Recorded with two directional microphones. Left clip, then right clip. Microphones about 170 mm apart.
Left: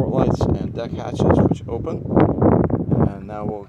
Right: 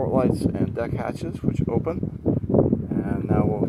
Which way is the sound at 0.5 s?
10° left (ahead or behind).